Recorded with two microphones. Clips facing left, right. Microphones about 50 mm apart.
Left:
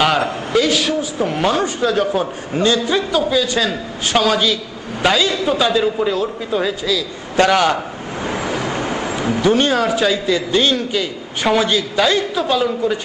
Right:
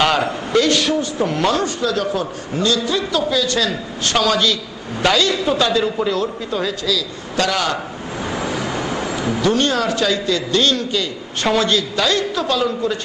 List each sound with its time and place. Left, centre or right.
0.5 s a man's voice: centre
7.3 s a man's voice: left
8.4 s a sound: left
9.4 s a man's voice: centre